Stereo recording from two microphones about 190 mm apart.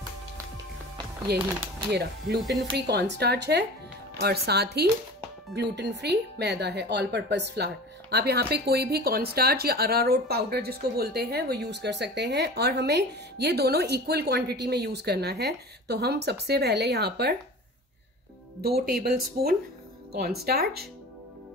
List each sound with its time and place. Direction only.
1.3 s speech: 60° right (ahead or behind)
18.6 s speech: 55° right (ahead or behind)